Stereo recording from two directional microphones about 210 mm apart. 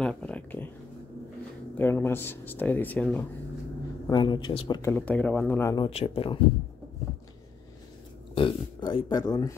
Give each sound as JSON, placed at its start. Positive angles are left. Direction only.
{"t": 0.0, "sound": "a sound", "side_deg": 5}
{"t": 1.8, "sound": "speech", "side_deg": 10}
{"t": 4.1, "sound": "speech", "side_deg": 20}
{"t": 5.9, "sound": "speech", "side_deg": 30}
{"t": 8.4, "sound": "speech", "side_deg": 25}